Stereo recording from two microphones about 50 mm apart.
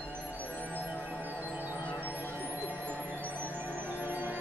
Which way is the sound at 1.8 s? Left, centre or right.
Left.